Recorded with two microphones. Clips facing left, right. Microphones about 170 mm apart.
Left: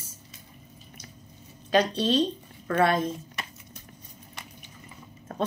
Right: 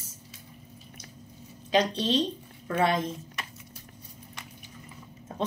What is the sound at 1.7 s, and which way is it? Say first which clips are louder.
Speech: left 2 dB; 20° right (ahead or behind).